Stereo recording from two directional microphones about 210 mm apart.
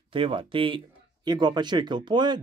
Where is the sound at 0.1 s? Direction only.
25° right (ahead or behind).